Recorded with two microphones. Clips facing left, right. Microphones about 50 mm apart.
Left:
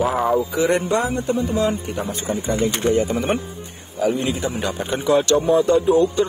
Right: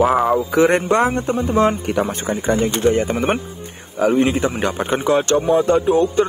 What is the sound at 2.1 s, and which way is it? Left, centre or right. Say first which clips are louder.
Speech: right 4 dB; right.